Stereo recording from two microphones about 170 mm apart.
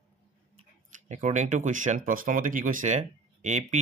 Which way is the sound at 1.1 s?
45° right (ahead or behind).